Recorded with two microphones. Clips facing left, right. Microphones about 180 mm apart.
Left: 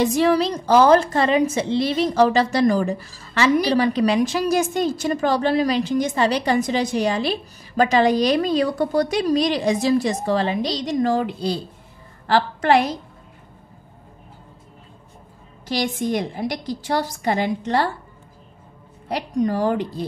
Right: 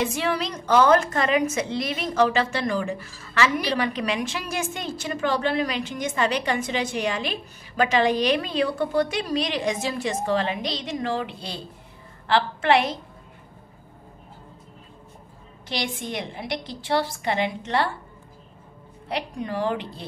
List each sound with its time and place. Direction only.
0.0 s a woman's voice: 40° left (ahead or behind)
15.7 s a woman's voice: 40° left (ahead or behind)
19.0 s a woman's voice: 40° left (ahead or behind)